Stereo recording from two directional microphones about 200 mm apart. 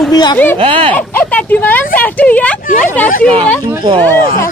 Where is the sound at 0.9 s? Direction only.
10° left (ahead or behind).